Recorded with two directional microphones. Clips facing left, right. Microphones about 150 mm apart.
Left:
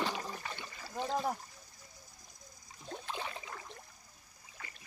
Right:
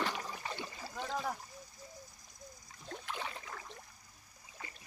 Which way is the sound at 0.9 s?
30° left (ahead or behind).